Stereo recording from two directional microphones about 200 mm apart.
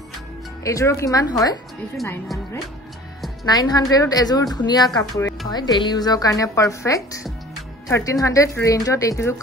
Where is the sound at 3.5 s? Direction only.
20° left (ahead or behind).